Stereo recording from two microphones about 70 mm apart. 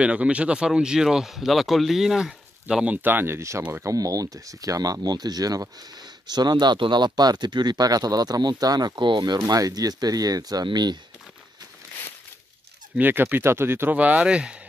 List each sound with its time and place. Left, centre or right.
0.0 s speech: centre
2.8 s speech: right
3.8 s speech: right
13.0 s speech: right
13.9 s speech: centre